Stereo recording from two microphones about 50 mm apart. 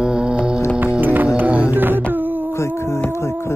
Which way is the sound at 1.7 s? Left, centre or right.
Right.